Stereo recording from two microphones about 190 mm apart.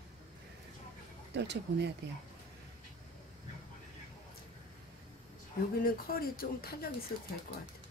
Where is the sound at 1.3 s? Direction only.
65° right (ahead or behind).